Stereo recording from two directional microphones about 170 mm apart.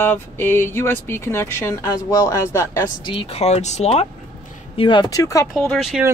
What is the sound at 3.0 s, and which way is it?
Speech, 35° left (ahead or behind).